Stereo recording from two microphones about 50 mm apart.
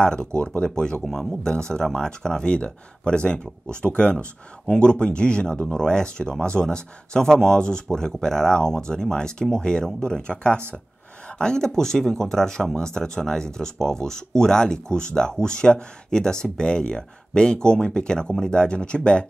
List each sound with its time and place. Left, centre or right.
0.0 s speech: centre
1.0 s speech: centre
1.4 s speech: centre